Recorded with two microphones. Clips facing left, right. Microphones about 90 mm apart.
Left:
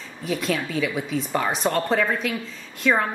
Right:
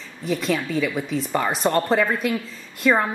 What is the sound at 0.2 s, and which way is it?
A woman's voice, centre (ahead or behind).